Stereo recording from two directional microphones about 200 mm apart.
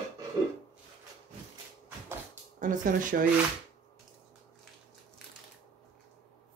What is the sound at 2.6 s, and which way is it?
Speech, 40° right (ahead or behind).